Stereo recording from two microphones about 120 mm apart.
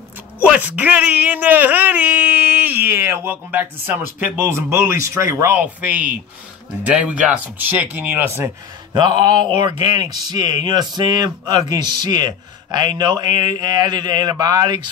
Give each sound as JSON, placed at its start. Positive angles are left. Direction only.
{"t": 0.4, "sound": "speech", "side_deg": -15}
{"t": 9.2, "sound": "speech", "side_deg": -40}